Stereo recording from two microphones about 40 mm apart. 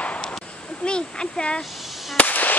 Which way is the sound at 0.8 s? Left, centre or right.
Left.